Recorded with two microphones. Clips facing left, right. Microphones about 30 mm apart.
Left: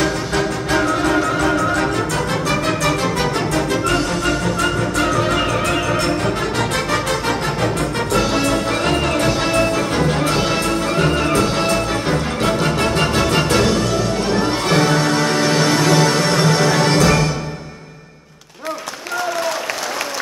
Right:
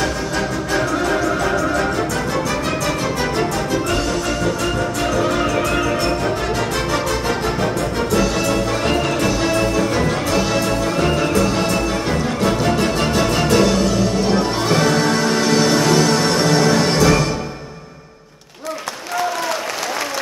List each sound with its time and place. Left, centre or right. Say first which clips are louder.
0.7 s music: left 2 dB; centre
2.4 s music: left 2 dB; left
6.9 s music: left 1 dB; left
9.1 s music: left 1 dB; left
12.7 s music: even; left
13.5 s music: right 1 dB; left
14.7 s music: even; centre